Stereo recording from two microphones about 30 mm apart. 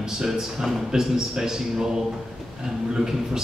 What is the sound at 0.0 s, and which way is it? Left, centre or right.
A man's voice, centre.